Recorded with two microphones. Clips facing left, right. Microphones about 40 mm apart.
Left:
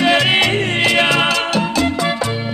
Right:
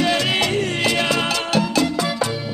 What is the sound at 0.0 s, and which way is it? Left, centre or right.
Music, left.